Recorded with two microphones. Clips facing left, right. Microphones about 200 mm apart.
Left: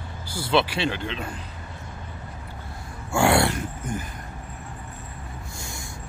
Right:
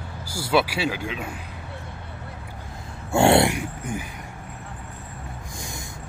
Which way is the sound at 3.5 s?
10° right (ahead or behind).